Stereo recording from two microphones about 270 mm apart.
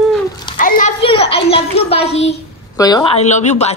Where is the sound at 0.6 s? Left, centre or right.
Left.